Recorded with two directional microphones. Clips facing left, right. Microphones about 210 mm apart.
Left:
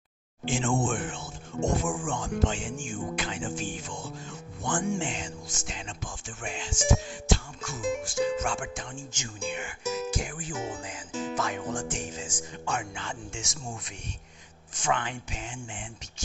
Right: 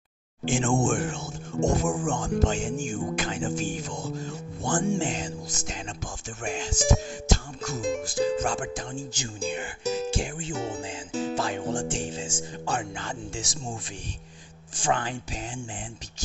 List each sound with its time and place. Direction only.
0.5 s music: 50° right (ahead or behind)
14.8 s music: 35° right (ahead or behind)